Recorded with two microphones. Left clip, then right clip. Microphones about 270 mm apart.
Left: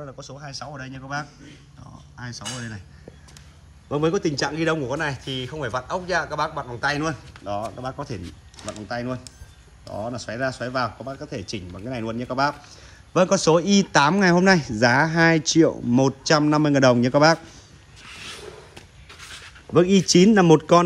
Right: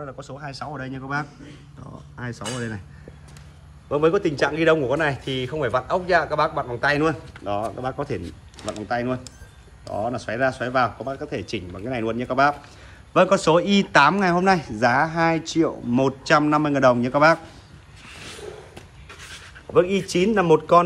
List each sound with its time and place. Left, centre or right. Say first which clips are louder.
0.0 s a man's voice: right 3 dB; centre
3.9 s a man's voice: right 3 dB; left
19.7 s a man's voice: left 2 dB; left